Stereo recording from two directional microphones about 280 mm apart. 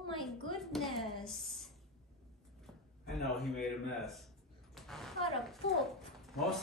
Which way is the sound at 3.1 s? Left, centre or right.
Centre.